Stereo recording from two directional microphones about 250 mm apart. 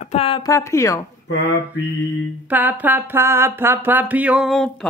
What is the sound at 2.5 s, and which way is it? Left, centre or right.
Speech, centre.